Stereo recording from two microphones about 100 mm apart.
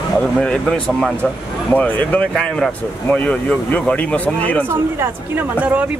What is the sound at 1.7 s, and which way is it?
Speech, 15° left (ahead or behind).